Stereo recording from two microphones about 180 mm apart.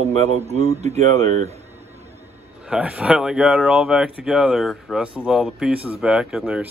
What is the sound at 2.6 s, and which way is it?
Speech, 5° right (ahead or behind).